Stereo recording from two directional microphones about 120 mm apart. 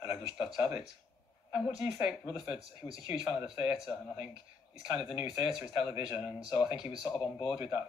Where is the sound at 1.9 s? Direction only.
5° right (ahead or behind).